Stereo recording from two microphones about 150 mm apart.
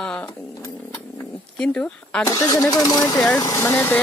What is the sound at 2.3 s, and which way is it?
Speech, 20° left (ahead or behind).